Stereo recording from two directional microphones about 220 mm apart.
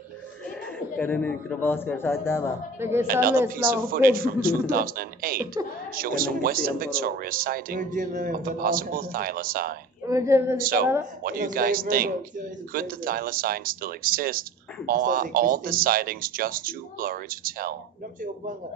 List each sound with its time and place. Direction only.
0.7 s a man's voice: 5° left (ahead or behind)
2.8 s a woman's voice: 10° right (ahead or behind)
3.1 s speech: 40° right (ahead or behind)
10.0 s a woman's voice: 15° right (ahead or behind)
10.6 s speech: 40° right (ahead or behind)